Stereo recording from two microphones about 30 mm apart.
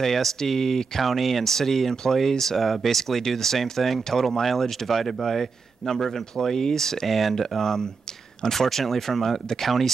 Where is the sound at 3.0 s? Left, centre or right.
Centre.